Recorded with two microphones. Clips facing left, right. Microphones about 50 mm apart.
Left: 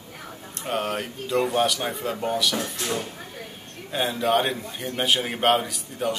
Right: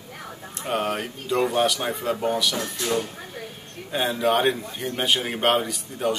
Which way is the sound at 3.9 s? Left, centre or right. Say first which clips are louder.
Right 1 dB; centre.